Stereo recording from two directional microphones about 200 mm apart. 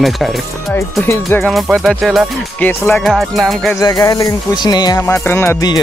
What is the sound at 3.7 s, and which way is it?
Speech, 15° left (ahead or behind).